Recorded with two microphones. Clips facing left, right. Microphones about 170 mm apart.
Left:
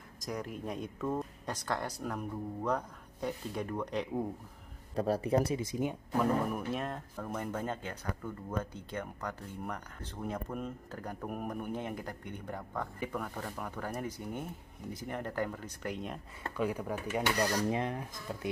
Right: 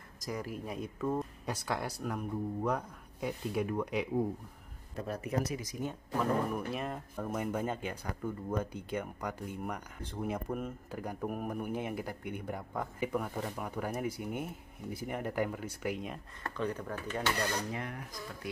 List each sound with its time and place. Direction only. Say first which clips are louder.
0.2 s speech: even; centre (ahead or behind)
4.9 s speech: left 6 dB; 30° left (ahead or behind)
6.5 s speech: even; centre (ahead or behind)
16.5 s speech: left 2 dB; 10° left (ahead or behind)
17.6 s speech: left 6 dB; 25° left (ahead or behind)